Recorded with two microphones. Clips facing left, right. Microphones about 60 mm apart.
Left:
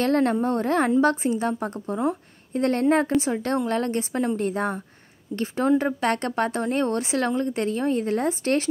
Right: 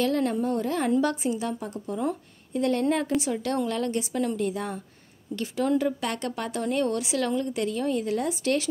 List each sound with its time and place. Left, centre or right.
0.0 s a woman's voice: left
2.0 s speech: left
2.6 s a woman's voice: left